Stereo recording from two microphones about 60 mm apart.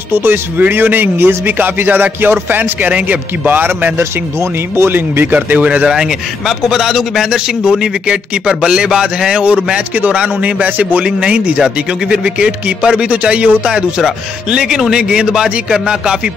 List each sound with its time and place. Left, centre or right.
0.1 s speech: right
2.9 s a man's voice: right
4.0 s speech: right
4.9 s a man's voice: right; by 16.2 s centre